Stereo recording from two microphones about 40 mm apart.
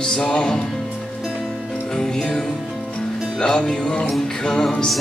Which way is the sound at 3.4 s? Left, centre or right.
Left.